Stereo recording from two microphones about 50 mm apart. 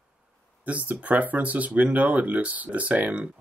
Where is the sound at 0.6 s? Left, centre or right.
Right.